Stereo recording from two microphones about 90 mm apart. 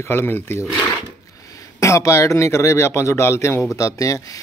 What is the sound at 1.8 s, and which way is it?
Speech, 35° left (ahead or behind).